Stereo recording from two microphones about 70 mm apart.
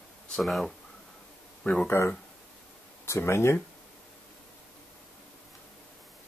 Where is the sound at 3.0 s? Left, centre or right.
Left.